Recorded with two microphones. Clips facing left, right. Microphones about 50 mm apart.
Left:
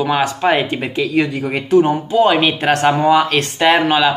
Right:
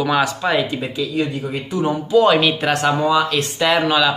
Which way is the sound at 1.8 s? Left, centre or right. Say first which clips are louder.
Right 1 dB; left.